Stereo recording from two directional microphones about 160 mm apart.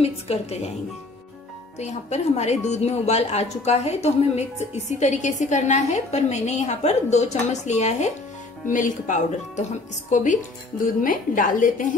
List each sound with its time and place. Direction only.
0.0 s a woman's voice: 40° left (ahead or behind)
1.8 s a woman's voice: 45° left (ahead or behind)